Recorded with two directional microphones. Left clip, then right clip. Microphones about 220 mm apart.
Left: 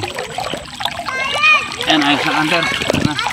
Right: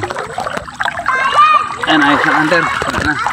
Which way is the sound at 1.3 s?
20° right (ahead or behind).